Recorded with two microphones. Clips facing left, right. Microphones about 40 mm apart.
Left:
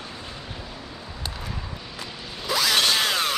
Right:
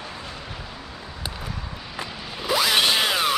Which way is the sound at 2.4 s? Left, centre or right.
Centre.